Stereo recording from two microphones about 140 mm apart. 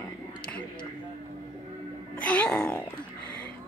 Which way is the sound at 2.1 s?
10° left (ahead or behind).